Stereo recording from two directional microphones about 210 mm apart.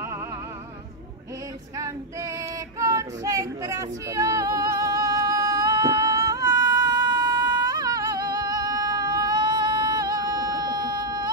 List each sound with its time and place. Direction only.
2.8 s female singing: 15° right (ahead or behind)